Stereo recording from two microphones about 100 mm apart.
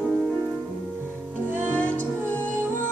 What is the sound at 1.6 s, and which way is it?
Music, 15° left (ahead or behind).